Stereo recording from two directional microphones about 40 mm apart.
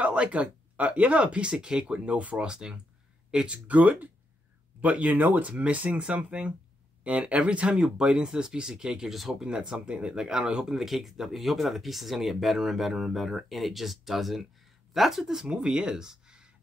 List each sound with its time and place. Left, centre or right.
0.0 s speech: right
2.4 s speech: right
3.6 s speech: right
5.1 s speech: right
5.6 s speech: right
7.7 s speech: centre
9.1 s speech: centre
9.4 s speech: right
15.4 s speech: right